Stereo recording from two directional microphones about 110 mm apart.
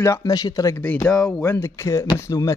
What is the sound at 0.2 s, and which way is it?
Speech, 35° left (ahead or behind).